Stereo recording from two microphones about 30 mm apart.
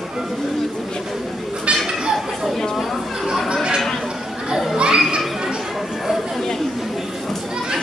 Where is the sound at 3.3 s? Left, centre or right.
Centre.